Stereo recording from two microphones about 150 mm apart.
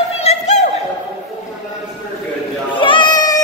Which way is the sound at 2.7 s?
35° left (ahead or behind).